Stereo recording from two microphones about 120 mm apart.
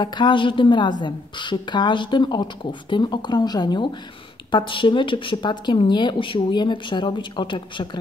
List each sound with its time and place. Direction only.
0.0 s a woman's voice: 40° left (ahead or behind)